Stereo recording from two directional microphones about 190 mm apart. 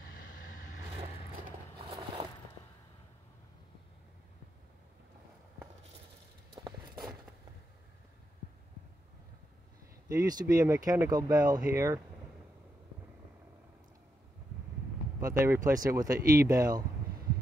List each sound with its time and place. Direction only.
6.6 s a sound: 20° right (ahead or behind)
10.0 s speech: 20° right (ahead or behind)
15.1 s speech: 15° right (ahead or behind)